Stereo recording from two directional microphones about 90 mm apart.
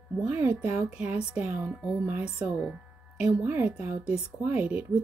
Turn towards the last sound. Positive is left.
turn(degrees=-15)  # may be behind; listen again after turning